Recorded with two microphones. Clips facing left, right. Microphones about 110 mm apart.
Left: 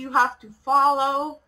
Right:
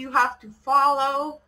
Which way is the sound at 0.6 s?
Centre (ahead or behind).